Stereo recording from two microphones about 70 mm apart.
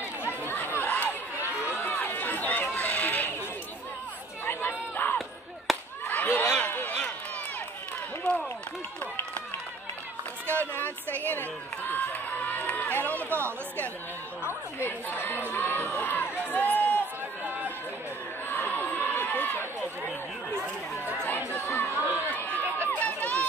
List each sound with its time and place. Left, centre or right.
0.2 s chatter: left
2.6 s music: left
4.5 s chatter: left
5.7 s a sound: centre
6.0 s a sound: left
8.2 s a sound: centre
10.4 s music: left
11.9 s run: left
14.4 s chatter: left
15.5 s crowd: left
18.5 s crowd: left
21.5 s chatter: left
22.8 s run: left